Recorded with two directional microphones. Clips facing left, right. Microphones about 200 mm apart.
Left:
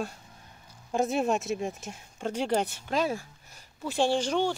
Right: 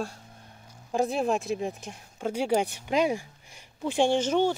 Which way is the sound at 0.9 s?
Centre (ahead or behind).